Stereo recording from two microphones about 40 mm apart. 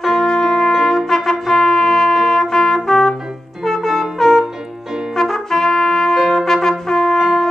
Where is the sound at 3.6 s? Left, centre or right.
Centre.